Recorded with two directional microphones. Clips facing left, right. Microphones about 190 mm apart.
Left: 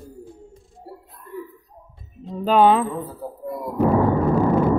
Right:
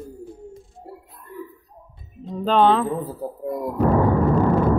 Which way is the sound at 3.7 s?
5° left (ahead or behind).